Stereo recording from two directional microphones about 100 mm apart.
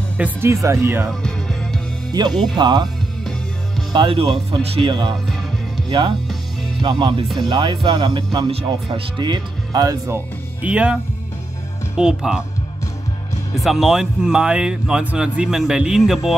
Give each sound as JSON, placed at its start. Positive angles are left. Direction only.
{"t": 0.2, "sound": "speech", "side_deg": -25}
{"t": 1.2, "sound": "music", "side_deg": 5}
{"t": 2.1, "sound": "speech", "side_deg": -45}
{"t": 3.9, "sound": "speech", "side_deg": -50}
{"t": 4.2, "sound": "speech", "side_deg": -65}
{"t": 10.6, "sound": "speech", "side_deg": -10}
{"t": 12.0, "sound": "speech", "side_deg": -5}
{"t": 13.6, "sound": "speech", "side_deg": 0}